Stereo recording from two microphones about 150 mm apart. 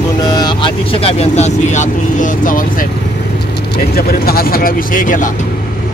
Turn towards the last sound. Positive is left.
turn(degrees=65)  # may be behind; listen again after turning